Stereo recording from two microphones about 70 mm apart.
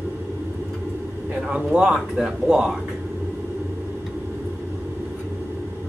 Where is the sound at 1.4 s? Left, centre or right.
Centre.